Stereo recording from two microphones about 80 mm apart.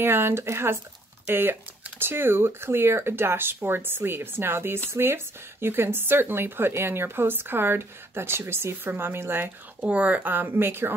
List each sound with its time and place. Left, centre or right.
0.0 s a woman's voice: right
9.8 s a woman's voice: centre